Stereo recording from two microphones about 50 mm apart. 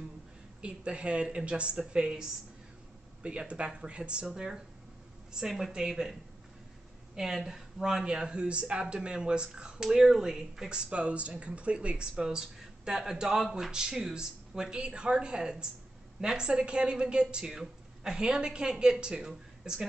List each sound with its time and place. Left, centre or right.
0.6 s speech: right
5.4 s speech: centre
7.2 s speech: centre
10.9 s speech: right